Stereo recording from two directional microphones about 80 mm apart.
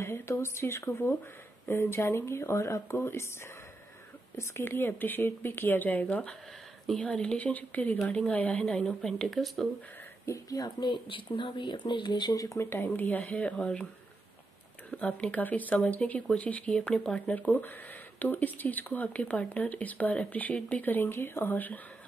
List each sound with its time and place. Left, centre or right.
0.0 s speech: left
4.4 s speech: left
8.0 s speech: centre
8.3 s speech: centre
8.6 s speech: centre
10.2 s speech: left
10.8 s speech: left
12.4 s speech: left; by 13.8 s centre
14.9 s speech: centre